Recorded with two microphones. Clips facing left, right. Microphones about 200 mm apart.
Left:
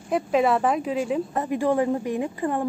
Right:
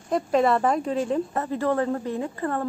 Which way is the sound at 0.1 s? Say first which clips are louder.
Even; 5° left (ahead or behind).